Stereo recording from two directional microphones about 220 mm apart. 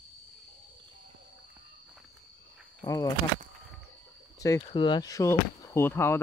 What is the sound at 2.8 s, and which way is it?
Speech, 15° left (ahead or behind).